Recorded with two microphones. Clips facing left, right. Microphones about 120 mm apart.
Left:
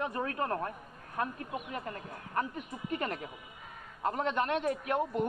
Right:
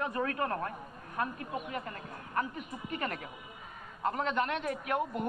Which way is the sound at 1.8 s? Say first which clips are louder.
Left 1 dB; 30° left (ahead or behind).